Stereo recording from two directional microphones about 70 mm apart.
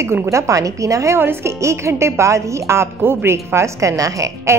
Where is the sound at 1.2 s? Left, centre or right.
Right.